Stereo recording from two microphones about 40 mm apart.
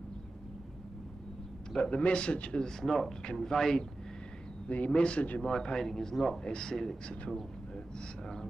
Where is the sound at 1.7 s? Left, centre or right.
Left; by 3.9 s centre.